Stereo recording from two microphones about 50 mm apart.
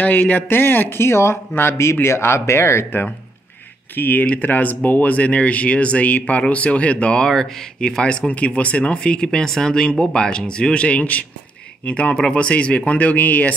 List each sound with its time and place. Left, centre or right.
0.0 s speech: left
0.5 s speech: left
3.9 s speech: left; by 8.3 s centre
8.3 s speech: left